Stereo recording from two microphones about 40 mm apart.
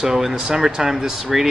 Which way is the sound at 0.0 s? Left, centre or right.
Centre.